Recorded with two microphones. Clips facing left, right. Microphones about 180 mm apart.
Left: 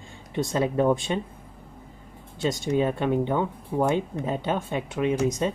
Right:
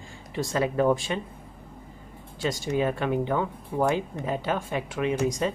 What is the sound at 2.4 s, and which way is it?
Speech, 25° left (ahead or behind).